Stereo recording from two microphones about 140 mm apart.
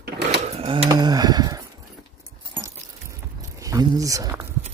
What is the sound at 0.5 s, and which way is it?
Sewing machine, 45° right (ahead or behind).